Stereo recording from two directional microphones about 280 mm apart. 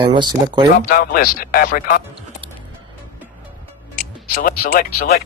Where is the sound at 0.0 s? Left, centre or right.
Centre.